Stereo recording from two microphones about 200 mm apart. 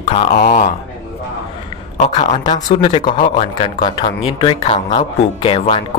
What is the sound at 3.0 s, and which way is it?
Speech, 40° left (ahead or behind).